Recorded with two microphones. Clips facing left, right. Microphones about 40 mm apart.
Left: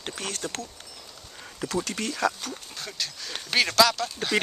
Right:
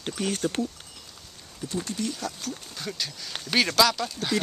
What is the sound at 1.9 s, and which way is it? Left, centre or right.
Speech, left.